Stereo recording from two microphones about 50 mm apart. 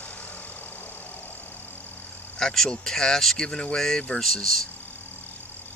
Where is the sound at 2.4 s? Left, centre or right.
Centre.